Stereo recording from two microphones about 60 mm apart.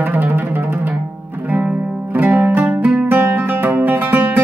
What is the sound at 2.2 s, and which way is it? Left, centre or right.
Music, right.